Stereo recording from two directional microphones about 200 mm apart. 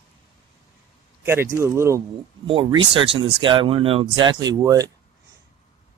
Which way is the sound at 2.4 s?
25° right (ahead or behind).